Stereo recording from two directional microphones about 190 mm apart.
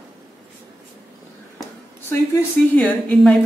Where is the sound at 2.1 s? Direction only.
10° left (ahead or behind).